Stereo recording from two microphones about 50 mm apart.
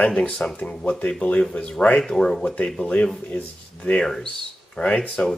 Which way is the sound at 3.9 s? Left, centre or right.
Left.